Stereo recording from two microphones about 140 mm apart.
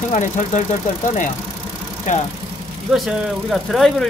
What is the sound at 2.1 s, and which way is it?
Speech, 65° left (ahead or behind).